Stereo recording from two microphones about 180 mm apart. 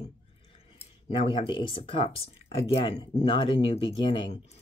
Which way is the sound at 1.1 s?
30° left (ahead or behind).